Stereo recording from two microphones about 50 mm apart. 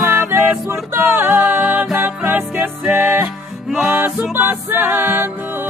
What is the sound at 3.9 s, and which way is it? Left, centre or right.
Music, right.